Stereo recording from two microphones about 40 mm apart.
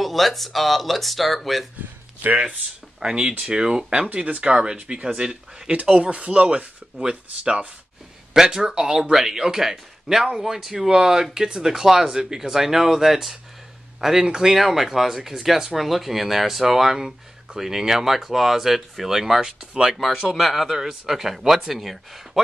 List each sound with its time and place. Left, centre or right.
0.0 s speech: centre
3.0 s speech: centre
4.1 s speech: right
6.1 s speech: right
7.0 s speech: right
20.2 s speech: centre